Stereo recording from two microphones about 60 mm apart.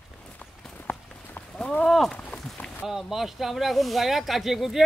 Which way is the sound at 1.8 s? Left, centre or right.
Centre.